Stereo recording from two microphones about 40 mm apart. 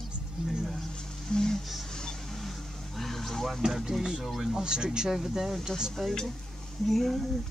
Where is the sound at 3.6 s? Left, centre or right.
Centre.